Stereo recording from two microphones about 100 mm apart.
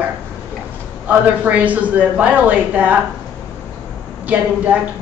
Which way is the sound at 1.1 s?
15° right (ahead or behind).